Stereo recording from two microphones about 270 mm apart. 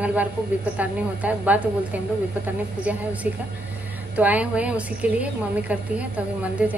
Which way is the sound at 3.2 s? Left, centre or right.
Right.